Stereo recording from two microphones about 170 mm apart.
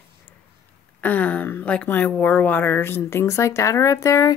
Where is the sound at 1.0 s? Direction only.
10° left (ahead or behind).